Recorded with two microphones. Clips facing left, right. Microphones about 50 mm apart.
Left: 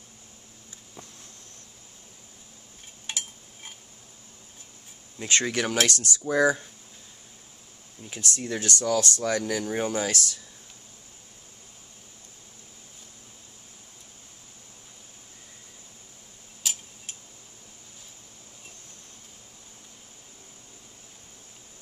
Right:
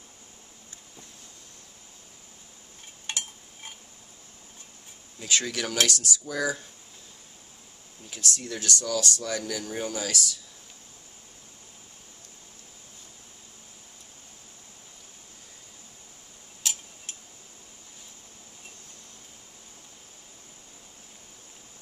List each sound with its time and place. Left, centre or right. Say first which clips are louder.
3.1 s a sound: right 1 dB; centre
5.2 s speech: left 3 dB; left
8.1 s speech: left 2 dB; left